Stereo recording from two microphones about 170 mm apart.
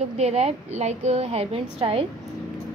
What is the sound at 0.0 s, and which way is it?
A woman's voice, 40° right (ahead or behind).